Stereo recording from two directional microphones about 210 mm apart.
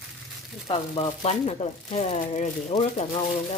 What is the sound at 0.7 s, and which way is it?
Speech, 25° left (ahead or behind).